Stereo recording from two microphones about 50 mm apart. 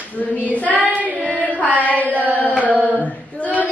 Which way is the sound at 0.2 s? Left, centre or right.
Left.